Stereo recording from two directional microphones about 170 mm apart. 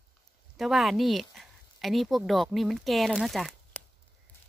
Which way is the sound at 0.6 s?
Centre (ahead or behind).